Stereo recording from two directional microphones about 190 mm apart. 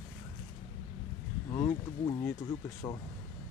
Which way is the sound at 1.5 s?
20° left (ahead or behind).